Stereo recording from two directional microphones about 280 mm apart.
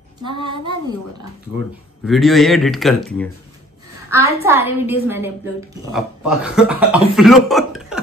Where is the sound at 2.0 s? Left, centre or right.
Centre.